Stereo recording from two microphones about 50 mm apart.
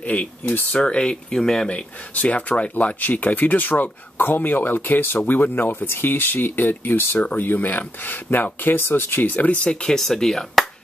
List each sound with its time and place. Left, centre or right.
0.1 s speech: left
1.7 s speech: left
7.2 s speech: left
9.7 s speech: centre